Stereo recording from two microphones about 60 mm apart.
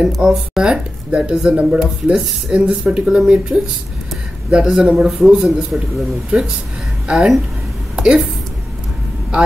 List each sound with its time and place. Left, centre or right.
0.2 s speech: centre
7.1 s a woman's voice: centre